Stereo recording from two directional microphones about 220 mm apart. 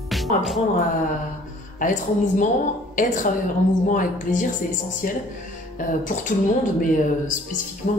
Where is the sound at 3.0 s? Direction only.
35° left (ahead or behind).